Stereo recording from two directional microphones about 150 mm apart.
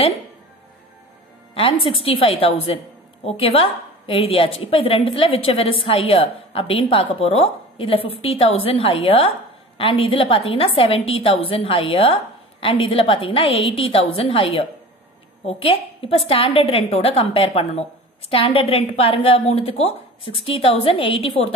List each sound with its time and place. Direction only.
1.5 s a woman's voice: 40° left (ahead or behind)